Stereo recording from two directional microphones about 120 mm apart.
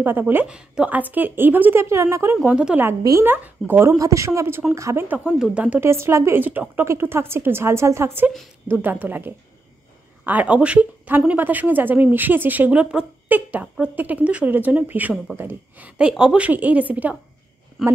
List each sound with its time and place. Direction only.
0.0 s a woman's voice: 15° right (ahead or behind)
2.3 s a woman's voice: 5° right (ahead or behind)
3.0 s speech: 25° right (ahead or behind)
5.0 s a woman's voice: 15° right (ahead or behind)